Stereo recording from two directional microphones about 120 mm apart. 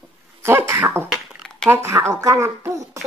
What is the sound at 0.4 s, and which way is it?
Throat clearing, 20° right (ahead or behind).